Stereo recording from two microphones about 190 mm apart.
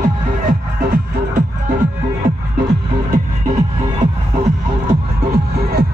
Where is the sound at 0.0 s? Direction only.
45° right (ahead or behind).